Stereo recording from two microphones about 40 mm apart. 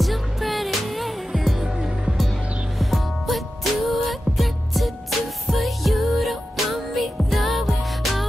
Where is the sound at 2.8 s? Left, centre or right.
Centre.